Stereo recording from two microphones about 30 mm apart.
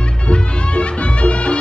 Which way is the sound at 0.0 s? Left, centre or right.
Left.